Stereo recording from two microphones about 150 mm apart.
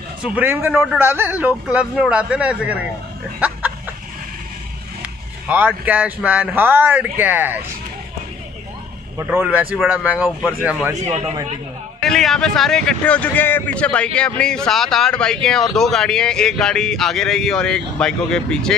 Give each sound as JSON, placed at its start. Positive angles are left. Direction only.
{"t": 0.2, "sound": "speech", "side_deg": -10}
{"t": 0.7, "sound": "speech", "side_deg": -5}
{"t": 1.0, "sound": "speech", "side_deg": -15}
{"t": 3.3, "sound": "a sound", "side_deg": -10}
{"t": 5.0, "sound": "speech", "side_deg": -10}
{"t": 9.2, "sound": "speech", "side_deg": -15}
{"t": 11.1, "sound": "a man's voice", "side_deg": -50}
{"t": 12.0, "sound": "speech", "side_deg": 0}